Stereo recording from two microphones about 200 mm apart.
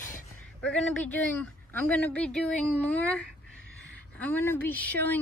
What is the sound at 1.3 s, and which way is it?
A woman's voice, 10° left (ahead or behind).